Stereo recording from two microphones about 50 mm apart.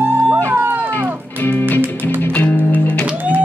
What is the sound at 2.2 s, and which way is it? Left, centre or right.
Music, left.